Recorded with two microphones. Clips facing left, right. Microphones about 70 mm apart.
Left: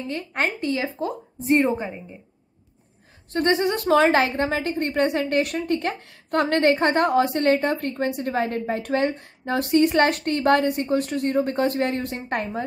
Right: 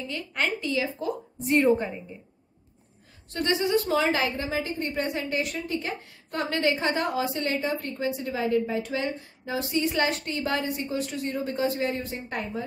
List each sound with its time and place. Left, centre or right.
0.1 s a woman's voice: left
1.7 s a woman's voice: centre
3.3 s a woman's voice: left